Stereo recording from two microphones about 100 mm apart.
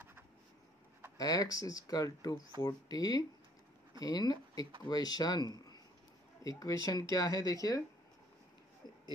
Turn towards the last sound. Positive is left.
turn(degrees=40)  # may be behind; listen again after turning